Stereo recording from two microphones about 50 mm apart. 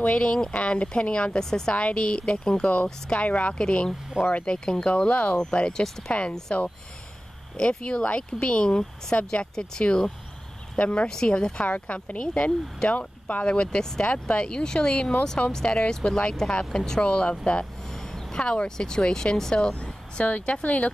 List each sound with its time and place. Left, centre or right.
0.0 s speech: left
1.4 s speech: centre
1.7 s speech: left
3.5 s speech: centre
4.2 s speech: left
4.5 s speech: centre
6.5 s speech: left
17.8 s a sound: centre
18.4 s speech: left
20.2 s speech: left